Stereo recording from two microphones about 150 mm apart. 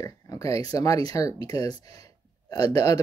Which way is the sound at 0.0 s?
20° left (ahead or behind).